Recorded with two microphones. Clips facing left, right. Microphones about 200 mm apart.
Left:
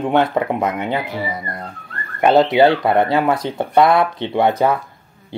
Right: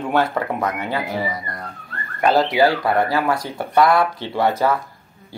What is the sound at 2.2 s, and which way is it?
Speech, 20° left (ahead or behind).